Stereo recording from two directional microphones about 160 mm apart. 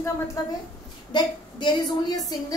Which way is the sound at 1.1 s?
30° left (ahead or behind).